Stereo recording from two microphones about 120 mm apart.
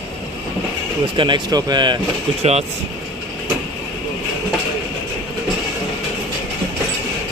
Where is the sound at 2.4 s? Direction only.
60° right (ahead or behind).